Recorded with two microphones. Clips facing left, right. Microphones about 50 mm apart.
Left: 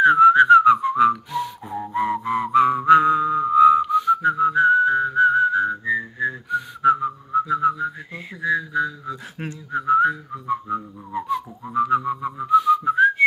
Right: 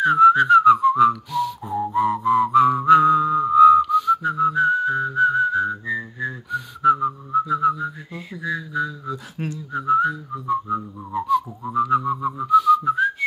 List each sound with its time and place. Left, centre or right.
0.0 s whistling: centre
1.7 s music: centre
9.8 s whistling: centre
11.1 s whistling: centre
11.7 s music: centre
12.4 s whistling: centre